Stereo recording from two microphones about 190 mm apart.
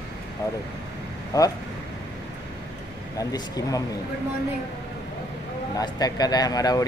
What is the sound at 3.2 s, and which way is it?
Speech, 20° left (ahead or behind).